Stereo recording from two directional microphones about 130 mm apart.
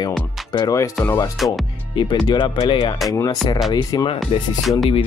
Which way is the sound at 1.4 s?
Centre (ahead or behind).